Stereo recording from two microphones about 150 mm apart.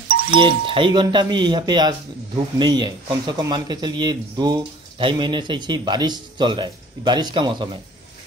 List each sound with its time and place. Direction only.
0.4 s speech: 35° right (ahead or behind)